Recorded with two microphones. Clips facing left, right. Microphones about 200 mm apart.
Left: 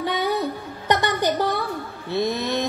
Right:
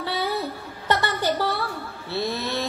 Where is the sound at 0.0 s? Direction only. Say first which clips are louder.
Left 3 dB; 15° left (ahead or behind).